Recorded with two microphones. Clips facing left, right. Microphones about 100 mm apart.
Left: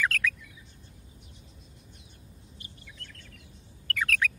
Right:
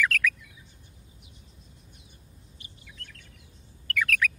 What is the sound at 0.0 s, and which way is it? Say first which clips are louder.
Bird: right 2 dB; 30° left (ahead or behind).